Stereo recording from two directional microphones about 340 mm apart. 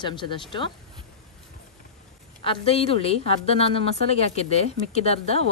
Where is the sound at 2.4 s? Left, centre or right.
Centre.